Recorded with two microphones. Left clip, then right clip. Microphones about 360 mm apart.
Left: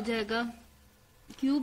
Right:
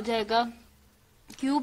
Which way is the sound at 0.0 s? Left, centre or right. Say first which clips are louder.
Right 6 dB; centre.